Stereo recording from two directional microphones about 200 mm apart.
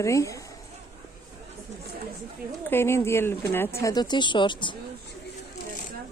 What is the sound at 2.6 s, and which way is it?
A woman's voice, 10° left (ahead or behind).